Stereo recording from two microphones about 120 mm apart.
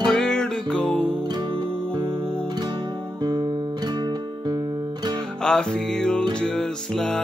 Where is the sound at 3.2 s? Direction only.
35° right (ahead or behind).